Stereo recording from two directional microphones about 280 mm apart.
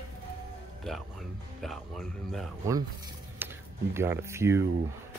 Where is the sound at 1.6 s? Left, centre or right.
Centre.